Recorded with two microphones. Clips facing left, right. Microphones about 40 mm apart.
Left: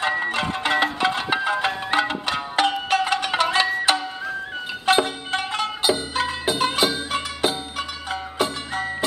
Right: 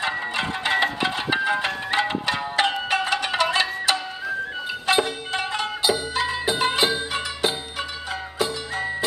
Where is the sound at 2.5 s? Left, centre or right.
Right.